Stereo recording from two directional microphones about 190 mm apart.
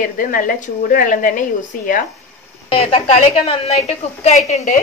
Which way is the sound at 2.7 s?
30° left (ahead or behind).